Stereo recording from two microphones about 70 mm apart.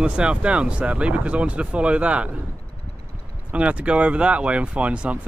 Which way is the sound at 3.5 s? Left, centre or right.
Centre.